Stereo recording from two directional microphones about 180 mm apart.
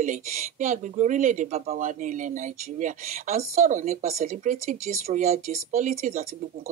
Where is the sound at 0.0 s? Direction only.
45° right (ahead or behind).